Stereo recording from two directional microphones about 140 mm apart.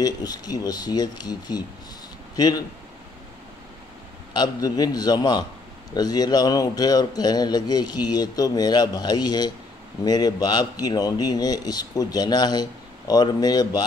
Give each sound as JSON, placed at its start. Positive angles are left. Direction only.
{"t": 0.0, "sound": "a man's voice", "side_deg": 30}
{"t": 4.3, "sound": "a man's voice", "side_deg": 30}